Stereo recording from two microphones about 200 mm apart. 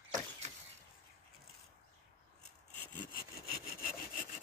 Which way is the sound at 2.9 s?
45° left (ahead or behind).